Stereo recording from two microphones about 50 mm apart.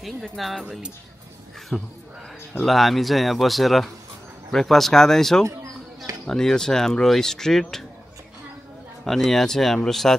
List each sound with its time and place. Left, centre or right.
0.4 s speech: centre
1.7 s a man's voice: centre
2.6 s speech: centre
9.0 s speech: centre